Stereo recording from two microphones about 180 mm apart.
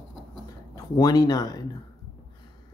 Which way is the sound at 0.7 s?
20° left (ahead or behind).